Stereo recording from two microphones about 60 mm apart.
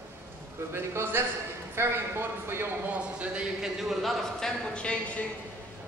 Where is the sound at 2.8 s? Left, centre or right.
Right.